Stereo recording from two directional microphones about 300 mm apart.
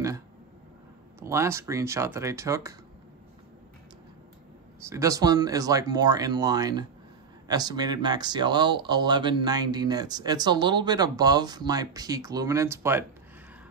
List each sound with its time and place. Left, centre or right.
1.2 s speech: centre
4.8 s speech: centre